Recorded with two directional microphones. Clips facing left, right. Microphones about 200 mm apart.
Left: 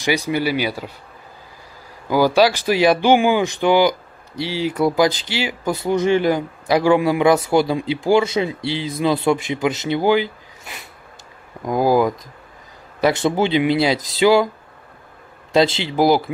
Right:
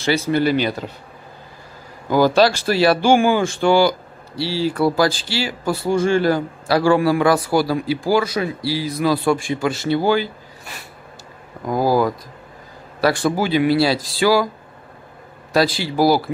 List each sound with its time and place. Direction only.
0.0 s speech: 15° left (ahead or behind)
2.0 s speech: 10° left (ahead or behind)
15.5 s speech: 20° left (ahead or behind)